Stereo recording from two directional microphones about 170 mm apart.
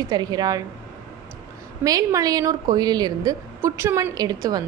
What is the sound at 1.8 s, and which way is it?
A woman's voice, 20° right (ahead or behind).